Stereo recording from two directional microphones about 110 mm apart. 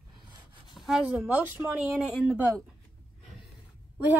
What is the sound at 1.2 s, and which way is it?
Speech, 15° right (ahead or behind).